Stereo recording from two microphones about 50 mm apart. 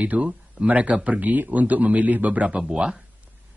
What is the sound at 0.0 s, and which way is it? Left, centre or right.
Speech, right.